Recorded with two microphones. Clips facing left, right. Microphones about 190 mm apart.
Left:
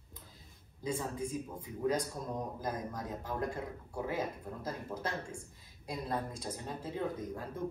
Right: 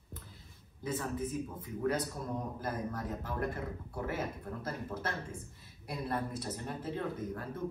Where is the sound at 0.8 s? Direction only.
15° left (ahead or behind).